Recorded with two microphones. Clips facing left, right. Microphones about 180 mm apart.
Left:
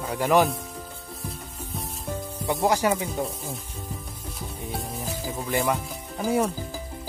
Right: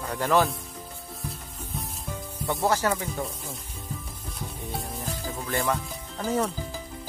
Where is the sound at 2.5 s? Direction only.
15° left (ahead or behind).